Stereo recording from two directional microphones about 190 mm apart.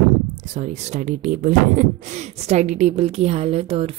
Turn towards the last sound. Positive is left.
turn(degrees=-30)  # may be behind; listen again after turning